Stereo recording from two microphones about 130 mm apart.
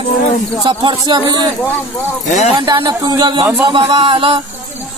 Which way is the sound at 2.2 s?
65° left (ahead or behind).